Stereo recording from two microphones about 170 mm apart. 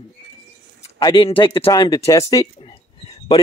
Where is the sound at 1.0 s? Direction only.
30° left (ahead or behind).